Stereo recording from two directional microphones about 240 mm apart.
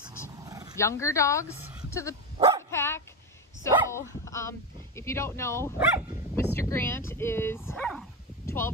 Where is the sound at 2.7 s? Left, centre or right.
Centre.